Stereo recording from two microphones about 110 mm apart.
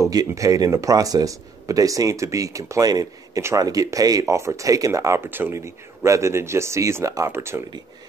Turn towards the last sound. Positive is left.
turn(degrees=-25)  # may be behind; listen again after turning